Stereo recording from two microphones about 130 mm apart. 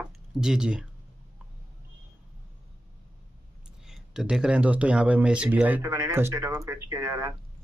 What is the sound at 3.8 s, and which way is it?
Speech, 5° right (ahead or behind).